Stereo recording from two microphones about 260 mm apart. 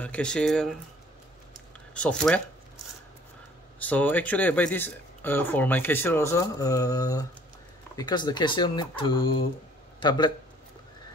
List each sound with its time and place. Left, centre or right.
0.0 s speech: centre
2.0 s speech: centre
3.8 s speech: centre